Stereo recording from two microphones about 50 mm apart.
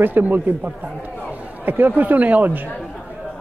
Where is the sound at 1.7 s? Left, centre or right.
Right.